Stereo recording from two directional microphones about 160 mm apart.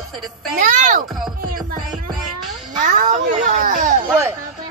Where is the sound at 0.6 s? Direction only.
55° right (ahead or behind).